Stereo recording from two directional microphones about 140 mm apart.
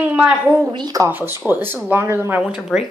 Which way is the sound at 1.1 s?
15° right (ahead or behind).